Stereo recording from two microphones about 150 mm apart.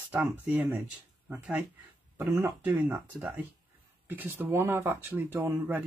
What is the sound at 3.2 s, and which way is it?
Speech, 5° right (ahead or behind).